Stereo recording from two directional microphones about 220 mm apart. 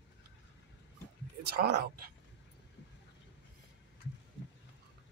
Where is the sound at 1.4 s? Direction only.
45° right (ahead or behind).